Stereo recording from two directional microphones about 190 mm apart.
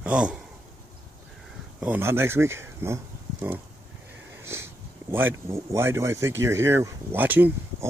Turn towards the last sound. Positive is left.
turn(degrees=-10)  # may be behind; listen again after turning